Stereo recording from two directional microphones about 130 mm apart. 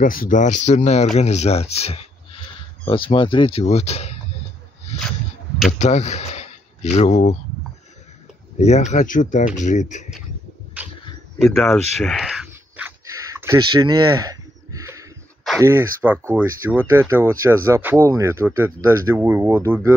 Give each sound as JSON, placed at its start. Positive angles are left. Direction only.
{"t": 0.0, "sound": "speech", "side_deg": 90}
{"t": 5.7, "sound": "speech", "side_deg": 60}
{"t": 8.5, "sound": "speech", "side_deg": 60}
{"t": 9.6, "sound": "speech", "side_deg": 70}
{"t": 11.6, "sound": "a sound", "side_deg": 5}
{"t": 13.3, "sound": "a sound", "side_deg": -20}
{"t": 15.6, "sound": "speech", "side_deg": -15}